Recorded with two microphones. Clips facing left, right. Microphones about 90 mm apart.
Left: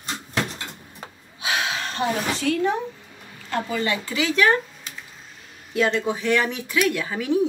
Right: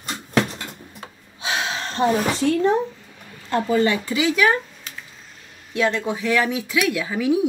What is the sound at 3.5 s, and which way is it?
Speech, 30° right (ahead or behind).